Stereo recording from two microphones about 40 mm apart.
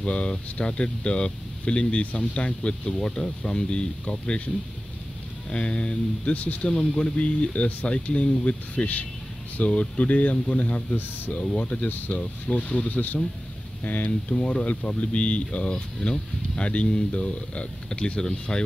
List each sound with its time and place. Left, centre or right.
0.0 s speech: left
5.5 s speech: left
6.3 s speech: left
10.3 s speech: left
14.3 s speech: centre